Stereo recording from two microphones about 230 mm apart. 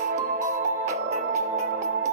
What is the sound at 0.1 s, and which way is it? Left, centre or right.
Music, right.